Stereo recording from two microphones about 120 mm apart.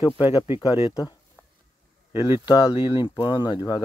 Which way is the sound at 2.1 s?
40° left (ahead or behind).